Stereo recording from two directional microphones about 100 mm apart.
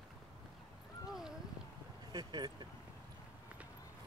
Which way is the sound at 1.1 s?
5° right (ahead or behind).